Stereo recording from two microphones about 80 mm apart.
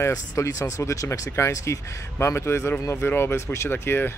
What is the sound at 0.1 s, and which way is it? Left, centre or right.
Speech, left.